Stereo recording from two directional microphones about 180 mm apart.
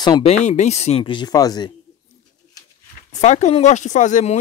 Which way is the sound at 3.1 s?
40° left (ahead or behind).